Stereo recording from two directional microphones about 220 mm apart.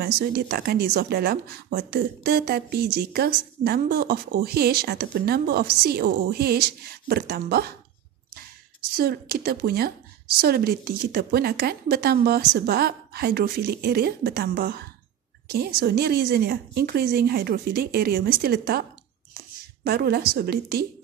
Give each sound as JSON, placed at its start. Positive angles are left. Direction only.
{"t": 0.0, "sound": "speech", "side_deg": -45}
{"t": 8.9, "sound": "speech", "side_deg": -45}